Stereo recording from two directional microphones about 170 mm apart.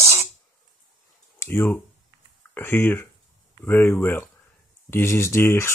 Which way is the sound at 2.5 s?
10° left (ahead or behind).